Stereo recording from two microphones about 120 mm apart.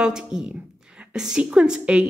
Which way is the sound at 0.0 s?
5° right (ahead or behind).